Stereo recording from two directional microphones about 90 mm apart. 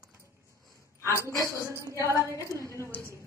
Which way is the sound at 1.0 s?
30° right (ahead or behind).